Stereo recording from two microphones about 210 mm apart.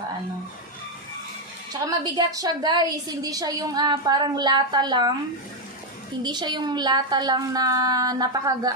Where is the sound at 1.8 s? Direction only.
15° right (ahead or behind).